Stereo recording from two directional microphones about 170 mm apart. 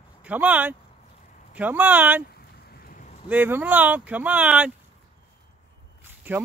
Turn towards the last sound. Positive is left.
turn(degrees=-10)  # may be behind; listen again after turning